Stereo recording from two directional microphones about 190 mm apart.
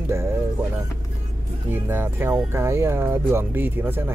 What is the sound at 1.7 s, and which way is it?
Speech, 10° right (ahead or behind).